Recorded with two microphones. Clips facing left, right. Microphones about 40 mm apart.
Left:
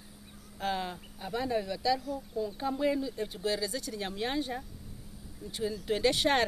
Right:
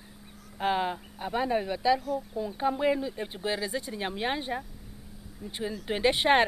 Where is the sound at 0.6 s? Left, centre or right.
Right.